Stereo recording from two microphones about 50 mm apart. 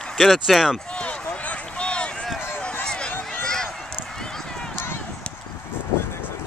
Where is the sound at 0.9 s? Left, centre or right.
Left.